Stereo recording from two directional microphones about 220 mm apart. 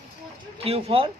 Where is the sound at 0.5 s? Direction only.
25° right (ahead or behind).